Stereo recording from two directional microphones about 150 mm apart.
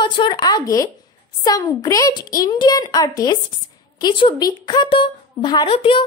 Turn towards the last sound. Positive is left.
turn(degrees=40)  # may be behind; listen again after turning